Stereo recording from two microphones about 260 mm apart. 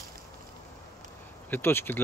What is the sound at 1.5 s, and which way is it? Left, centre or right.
Speech, centre.